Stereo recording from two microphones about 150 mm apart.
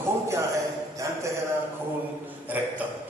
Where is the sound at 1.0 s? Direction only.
20° right (ahead or behind).